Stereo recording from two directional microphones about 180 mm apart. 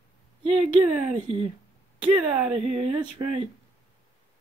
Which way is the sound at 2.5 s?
30° right (ahead or behind).